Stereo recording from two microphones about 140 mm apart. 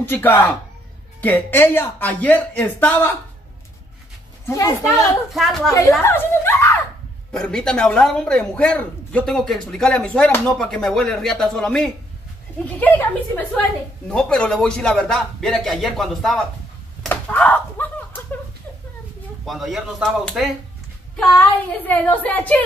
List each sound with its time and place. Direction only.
0.0 s speech: 15° left (ahead or behind)
4.5 s speech: 20° left (ahead or behind)
5.3 s a man's voice: centre (ahead or behind)
5.7 s speech: 20° left (ahead or behind)
7.3 s a man's voice: 5° left (ahead or behind)
17.1 s a sound: 10° left (ahead or behind)
19.4 s a man's voice: centre (ahead or behind)
21.4 s speech: 15° left (ahead or behind)